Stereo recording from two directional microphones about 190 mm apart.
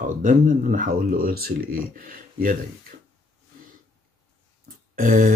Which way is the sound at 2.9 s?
50° right (ahead or behind).